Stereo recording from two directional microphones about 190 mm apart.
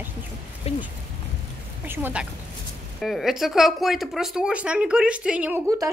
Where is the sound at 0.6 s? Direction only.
35° left (ahead or behind).